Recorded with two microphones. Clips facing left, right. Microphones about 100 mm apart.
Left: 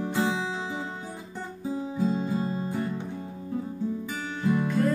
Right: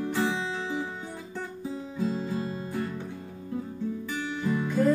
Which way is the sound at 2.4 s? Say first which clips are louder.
Left 4 dB; 35° left (ahead or behind).